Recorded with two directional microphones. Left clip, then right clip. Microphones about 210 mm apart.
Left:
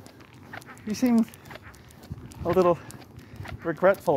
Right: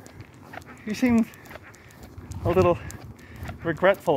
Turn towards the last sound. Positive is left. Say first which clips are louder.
# right 1 dB
turn(degrees=-25)  # may be behind; listen again after turning